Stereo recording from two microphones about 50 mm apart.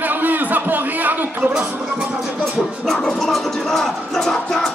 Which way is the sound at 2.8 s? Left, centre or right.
Centre.